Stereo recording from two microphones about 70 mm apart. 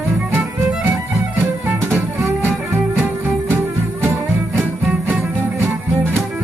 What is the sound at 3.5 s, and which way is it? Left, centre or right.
Music, right.